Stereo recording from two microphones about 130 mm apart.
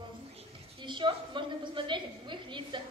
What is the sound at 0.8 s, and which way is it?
A woman's voice, 40° right (ahead or behind).